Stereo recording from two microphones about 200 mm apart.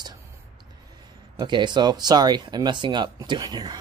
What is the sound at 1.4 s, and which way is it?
Speech, 20° right (ahead or behind).